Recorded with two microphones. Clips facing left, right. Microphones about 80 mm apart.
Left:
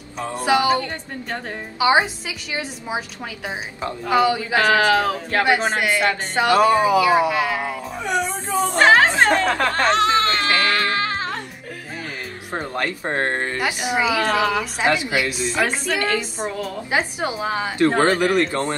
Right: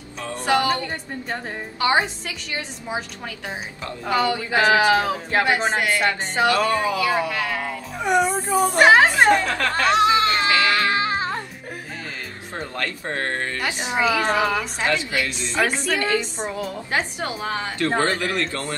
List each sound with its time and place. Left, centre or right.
0.5 s a woman's voice: centre
1.8 s a woman's voice: centre
4.1 s a woman's voice: centre
4.6 s speech: centre
5.4 s a woman's voice: centre
6.5 s a woman's voice: centre
8.0 s a woman's voice: right
9.5 s speech: left
9.8 s speech: centre
10.6 s music: centre
12.5 s speech: left
13.8 s a woman's voice: centre